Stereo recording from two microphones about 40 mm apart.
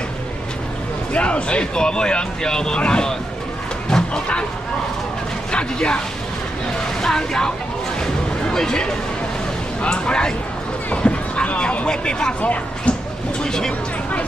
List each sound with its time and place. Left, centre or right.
1.1 s speech: left
3.9 s a sound: left
5.5 s speech: left
8.5 s speech: centre
12.4 s speech: left
13.4 s speech: centre